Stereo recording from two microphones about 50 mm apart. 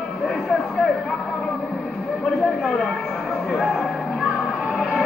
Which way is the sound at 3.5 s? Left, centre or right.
Centre.